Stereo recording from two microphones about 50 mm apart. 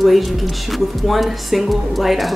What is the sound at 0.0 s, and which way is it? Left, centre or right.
A woman's voice, centre.